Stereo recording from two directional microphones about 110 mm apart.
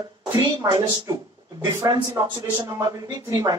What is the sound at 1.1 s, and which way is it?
Speech, 35° right (ahead or behind).